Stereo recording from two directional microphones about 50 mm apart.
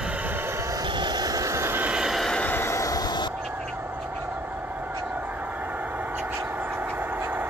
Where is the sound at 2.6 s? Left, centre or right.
Left.